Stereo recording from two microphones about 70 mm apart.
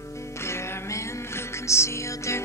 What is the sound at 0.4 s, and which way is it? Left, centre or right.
Music, left.